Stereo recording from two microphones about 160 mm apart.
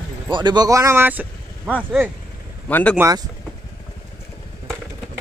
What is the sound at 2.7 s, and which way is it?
Speech, 10° left (ahead or behind).